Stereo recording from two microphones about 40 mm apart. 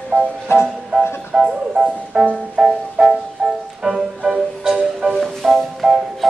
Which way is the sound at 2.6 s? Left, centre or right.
Centre.